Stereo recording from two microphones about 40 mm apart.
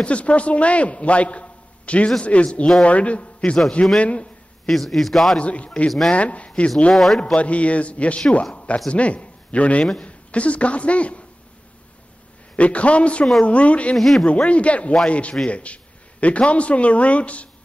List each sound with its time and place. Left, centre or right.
0.0 s a man's voice: left
4.6 s a man's voice: centre
5.4 s a man's voice: left
5.9 s speech: centre
6.1 s a man's voice: left
6.9 s a man's voice: centre
7.3 s a man's voice: left
12.5 s a man's voice: left
13.9 s a man's voice: centre
14.2 s a man's voice: left